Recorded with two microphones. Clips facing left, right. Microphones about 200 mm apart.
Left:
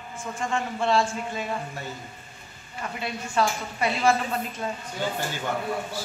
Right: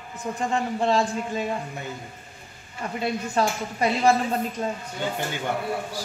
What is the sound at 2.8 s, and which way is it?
A woman's voice, 40° right (ahead or behind).